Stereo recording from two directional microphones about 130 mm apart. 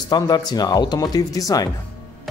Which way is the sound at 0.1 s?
30° left (ahead or behind).